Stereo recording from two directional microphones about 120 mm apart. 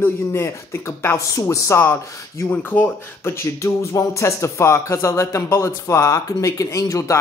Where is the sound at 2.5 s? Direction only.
15° left (ahead or behind).